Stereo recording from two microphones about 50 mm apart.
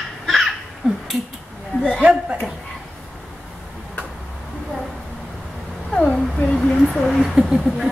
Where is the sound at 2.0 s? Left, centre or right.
Right.